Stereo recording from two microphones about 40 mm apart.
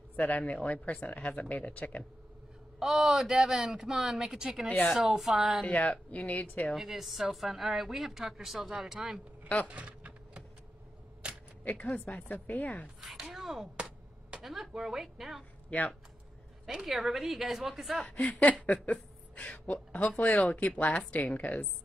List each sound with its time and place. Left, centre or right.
0.1 s speech: left
2.8 s a woman's voice: centre
6.1 s speech: left
6.7 s a woman's voice: centre
9.7 s typing: right
11.2 s camera: right
11.6 s speech: left
13.0 s a sound: centre
14.8 s a woman's voice: centre
15.7 s speech: left
16.7 s a woman's voice: centre
18.0 s speech: left
18.3 s speech: left